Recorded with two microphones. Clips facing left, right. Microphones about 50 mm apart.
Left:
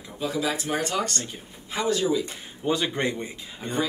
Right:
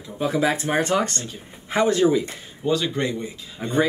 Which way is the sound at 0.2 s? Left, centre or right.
Right.